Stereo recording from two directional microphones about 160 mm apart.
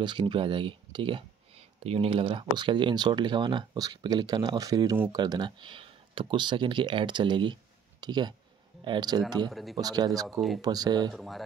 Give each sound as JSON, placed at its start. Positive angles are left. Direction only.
{"t": 0.0, "sound": "speech", "side_deg": -30}
{"t": 9.5, "sound": "a man's voice", "side_deg": 0}
{"t": 9.8, "sound": "speech", "side_deg": -25}
{"t": 11.1, "sound": "a man's voice", "side_deg": 0}